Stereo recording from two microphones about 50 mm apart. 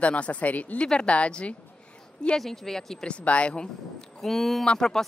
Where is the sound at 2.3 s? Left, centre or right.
Centre.